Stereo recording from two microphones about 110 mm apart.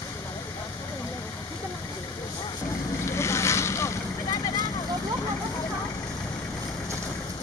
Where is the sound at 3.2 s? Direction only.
25° left (ahead or behind).